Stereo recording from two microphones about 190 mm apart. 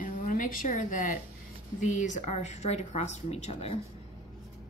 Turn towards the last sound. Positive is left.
turn(degrees=30)  # may be behind; listen again after turning